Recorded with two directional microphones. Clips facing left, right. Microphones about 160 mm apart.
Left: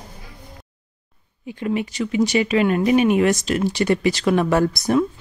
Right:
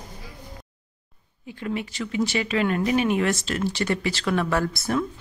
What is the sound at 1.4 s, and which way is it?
Speech, 15° left (ahead or behind).